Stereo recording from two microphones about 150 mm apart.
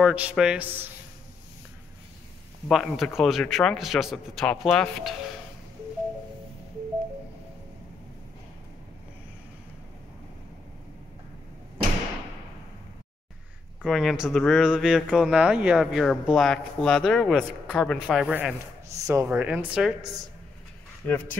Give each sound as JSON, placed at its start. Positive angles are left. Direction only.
{"t": 0.0, "sound": "speech", "side_deg": -10}
{"t": 2.7, "sound": "speech", "side_deg": 0}
{"t": 13.8, "sound": "speech", "side_deg": 0}
{"t": 18.9, "sound": "speech", "side_deg": -20}
{"t": 19.2, "sound": "speech", "side_deg": -10}
{"t": 21.0, "sound": "speech", "side_deg": 15}